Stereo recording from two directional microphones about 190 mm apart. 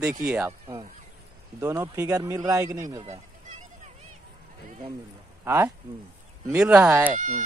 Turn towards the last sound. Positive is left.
turn(degrees=-40)  # may be behind; listen again after turning